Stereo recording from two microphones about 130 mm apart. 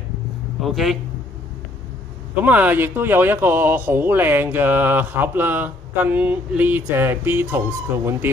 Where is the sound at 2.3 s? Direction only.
10° right (ahead or behind).